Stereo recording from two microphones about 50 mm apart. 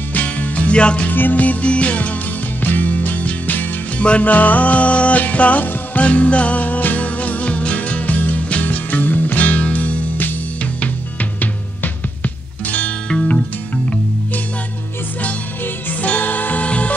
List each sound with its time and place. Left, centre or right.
0.1 s music: left
1.0 s music: left
12.6 s music: left
15.6 s music: left